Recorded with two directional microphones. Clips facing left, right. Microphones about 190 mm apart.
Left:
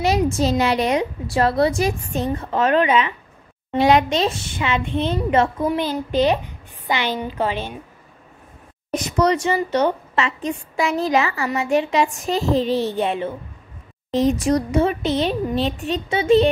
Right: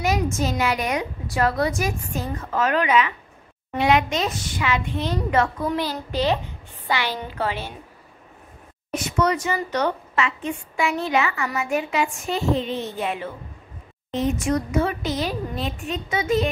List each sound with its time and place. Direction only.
0.0 s a woman's voice: 35° left (ahead or behind)
8.9 s a woman's voice: 35° left (ahead or behind)
10.1 s a woman's voice: 35° left (ahead or behind)